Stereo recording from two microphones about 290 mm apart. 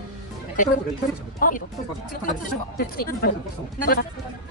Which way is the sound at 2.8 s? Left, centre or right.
Left.